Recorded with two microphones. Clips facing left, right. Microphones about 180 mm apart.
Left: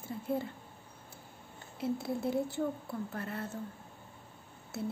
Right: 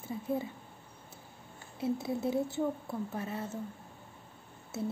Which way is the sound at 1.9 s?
20° right (ahead or behind).